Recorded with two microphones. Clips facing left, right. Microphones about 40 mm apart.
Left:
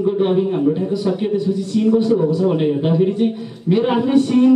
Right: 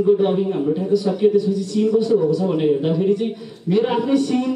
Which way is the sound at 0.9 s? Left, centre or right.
Left.